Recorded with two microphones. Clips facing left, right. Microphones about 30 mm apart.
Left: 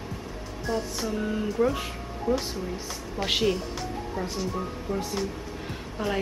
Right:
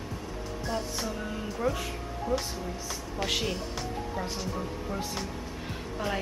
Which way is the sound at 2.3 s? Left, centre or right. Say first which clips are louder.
Left 4 dB; left.